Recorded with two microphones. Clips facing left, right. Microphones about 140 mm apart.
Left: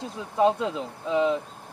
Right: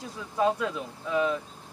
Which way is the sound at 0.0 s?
20° left (ahead or behind).